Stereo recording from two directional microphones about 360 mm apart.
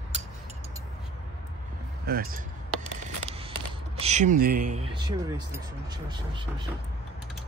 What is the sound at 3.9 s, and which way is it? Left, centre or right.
Speech, centre.